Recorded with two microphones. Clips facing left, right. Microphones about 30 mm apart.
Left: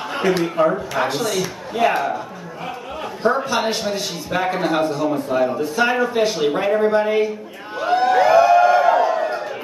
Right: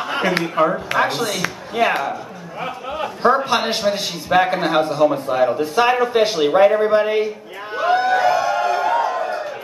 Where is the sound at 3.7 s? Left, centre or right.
Right.